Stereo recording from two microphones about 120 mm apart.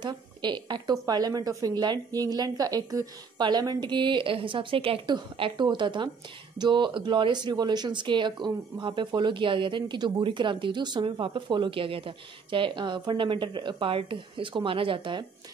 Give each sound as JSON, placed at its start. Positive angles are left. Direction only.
{"t": 0.0, "sound": "speech", "side_deg": -40}
{"t": 5.0, "sound": "speech", "side_deg": -40}